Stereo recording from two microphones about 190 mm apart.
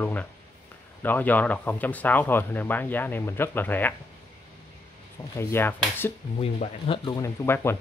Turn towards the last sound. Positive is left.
turn(degrees=10)  # may be behind; listen again after turning